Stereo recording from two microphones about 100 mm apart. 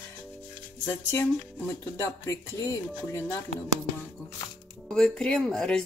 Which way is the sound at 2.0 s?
30° left (ahead or behind).